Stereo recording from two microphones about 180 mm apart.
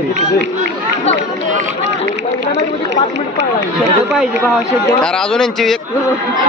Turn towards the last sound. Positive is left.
turn(degrees=0)  # may be behind; listen again after turning